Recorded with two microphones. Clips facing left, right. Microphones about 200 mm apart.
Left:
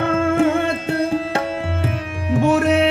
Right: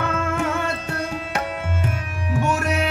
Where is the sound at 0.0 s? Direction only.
30° left (ahead or behind).